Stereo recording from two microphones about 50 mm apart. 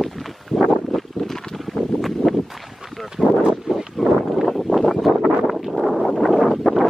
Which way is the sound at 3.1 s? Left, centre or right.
Centre.